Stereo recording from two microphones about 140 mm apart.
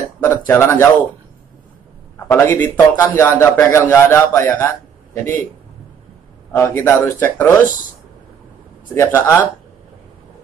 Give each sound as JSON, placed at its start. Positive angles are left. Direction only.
{"t": 0.2, "sound": "a man's voice", "side_deg": 20}
{"t": 2.3, "sound": "a man's voice", "side_deg": 15}
{"t": 6.5, "sound": "a man's voice", "side_deg": 20}
{"t": 8.9, "sound": "a man's voice", "side_deg": 20}